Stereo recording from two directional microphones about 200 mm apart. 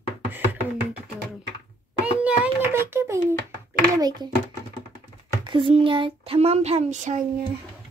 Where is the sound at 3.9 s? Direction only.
20° right (ahead or behind).